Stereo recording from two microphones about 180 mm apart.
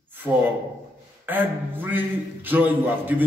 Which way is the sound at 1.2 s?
10° right (ahead or behind).